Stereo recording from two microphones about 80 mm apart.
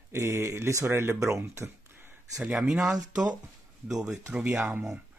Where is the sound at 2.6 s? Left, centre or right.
Centre.